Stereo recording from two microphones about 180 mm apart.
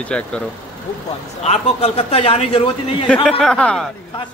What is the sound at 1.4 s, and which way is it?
A man's voice, 35° left (ahead or behind).